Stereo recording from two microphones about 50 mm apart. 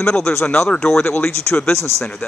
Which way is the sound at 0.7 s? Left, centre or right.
Centre.